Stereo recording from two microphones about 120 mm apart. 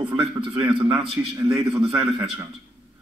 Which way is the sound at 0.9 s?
55° right (ahead or behind).